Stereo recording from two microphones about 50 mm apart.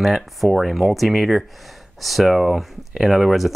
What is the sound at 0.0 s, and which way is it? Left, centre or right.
Speech, centre.